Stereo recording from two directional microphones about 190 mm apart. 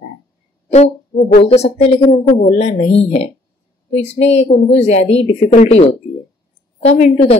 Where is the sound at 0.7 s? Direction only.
35° left (ahead or behind).